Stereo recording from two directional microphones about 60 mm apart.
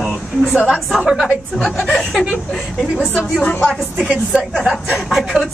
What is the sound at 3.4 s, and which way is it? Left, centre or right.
Speech, left.